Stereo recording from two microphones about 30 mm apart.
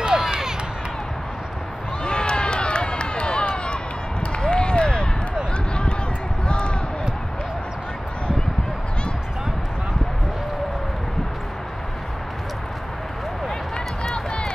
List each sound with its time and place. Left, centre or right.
0.1 s run: centre
2.0 s run: left
4.4 s a sound: left
6.4 s basketball bounce: left